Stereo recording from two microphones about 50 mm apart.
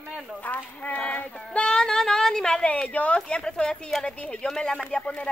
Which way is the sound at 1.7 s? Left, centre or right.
Centre.